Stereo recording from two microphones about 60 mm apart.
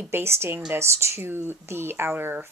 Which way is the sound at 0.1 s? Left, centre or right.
Right.